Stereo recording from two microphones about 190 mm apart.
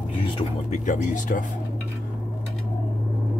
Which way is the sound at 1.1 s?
45° left (ahead or behind).